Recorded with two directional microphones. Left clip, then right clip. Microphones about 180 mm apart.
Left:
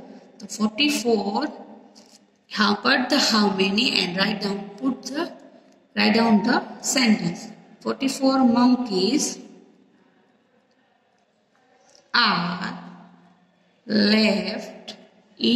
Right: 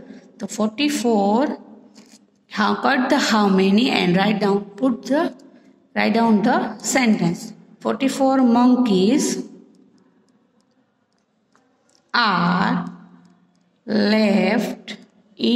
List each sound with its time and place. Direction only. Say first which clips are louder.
0.0 s a woman's voice: right 7 dB; 65° right (ahead or behind)
12.1 s a sound: right 2 dB; 60° right (ahead or behind)
13.8 s speech: right 1 dB; 60° right (ahead or behind)